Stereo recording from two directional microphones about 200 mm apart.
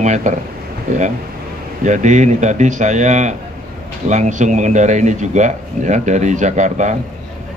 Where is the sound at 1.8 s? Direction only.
35° right (ahead or behind).